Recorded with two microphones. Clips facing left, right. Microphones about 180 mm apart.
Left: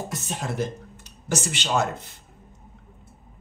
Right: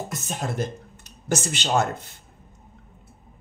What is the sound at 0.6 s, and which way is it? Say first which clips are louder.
Speech: even; 50° right (ahead or behind).